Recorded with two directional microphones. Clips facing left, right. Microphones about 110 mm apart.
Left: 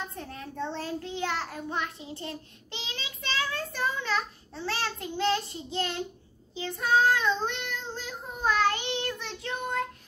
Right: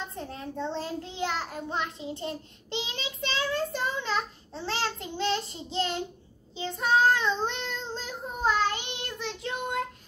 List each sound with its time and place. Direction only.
0.1 s a child's voice: 25° right (ahead or behind)
8.5 s child singing: 20° right (ahead or behind)